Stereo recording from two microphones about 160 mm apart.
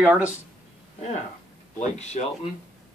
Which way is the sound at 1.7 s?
45° left (ahead or behind).